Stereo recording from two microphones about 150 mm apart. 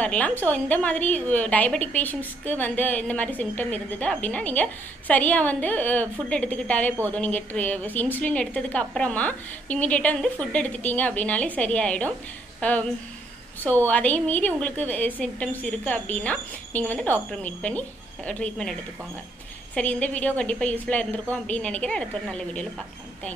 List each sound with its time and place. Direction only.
0.0 s a woman's voice: 10° left (ahead or behind)